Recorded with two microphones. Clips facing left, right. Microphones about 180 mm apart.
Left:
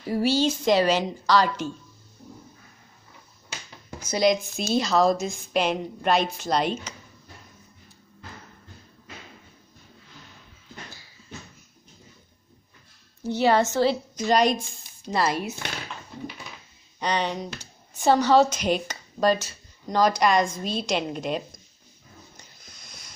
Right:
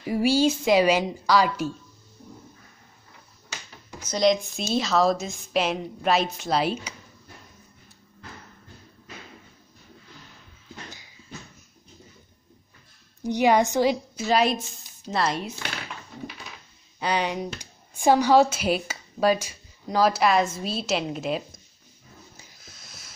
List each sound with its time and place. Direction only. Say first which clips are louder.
0.0 s a woman's voice: right 2 dB; 10° right (ahead or behind)
4.0 s a woman's voice: even; 5° left (ahead or behind); by 7.0 s 10° right (ahead or behind)
13.2 s a woman's voice: right 1 dB; 15° right (ahead or behind); by 15.5 s 5° left (ahead or behind)
17.0 s speech: right 1 dB; 10° right (ahead or behind)
22.4 s a sound: right 1 dB; 5° right (ahead or behind)